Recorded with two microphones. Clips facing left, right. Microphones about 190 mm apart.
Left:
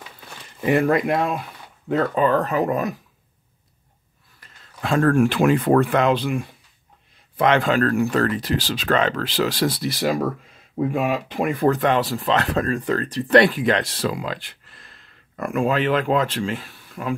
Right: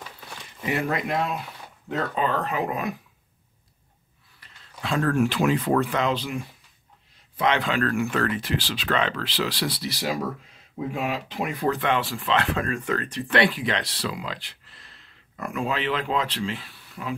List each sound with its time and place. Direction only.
0.7 s speech: 50° left (ahead or behind)
4.4 s speech: 50° left (ahead or behind)